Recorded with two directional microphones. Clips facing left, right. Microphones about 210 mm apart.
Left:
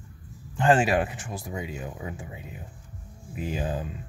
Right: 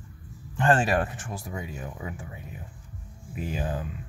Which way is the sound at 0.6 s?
10° left (ahead or behind).